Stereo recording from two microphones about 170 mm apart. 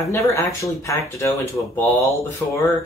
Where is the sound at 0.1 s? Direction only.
15° left (ahead or behind).